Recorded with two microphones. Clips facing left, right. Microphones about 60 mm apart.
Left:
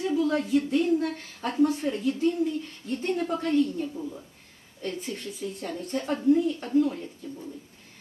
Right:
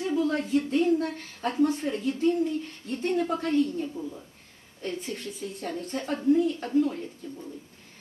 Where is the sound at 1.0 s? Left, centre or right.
Centre.